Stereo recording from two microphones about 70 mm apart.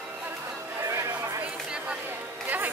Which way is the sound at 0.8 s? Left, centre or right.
Right.